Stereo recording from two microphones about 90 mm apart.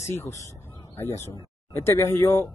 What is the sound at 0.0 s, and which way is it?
Speech, 35° left (ahead or behind).